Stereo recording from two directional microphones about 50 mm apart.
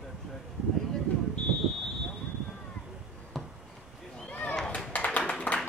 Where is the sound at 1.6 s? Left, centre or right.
Centre.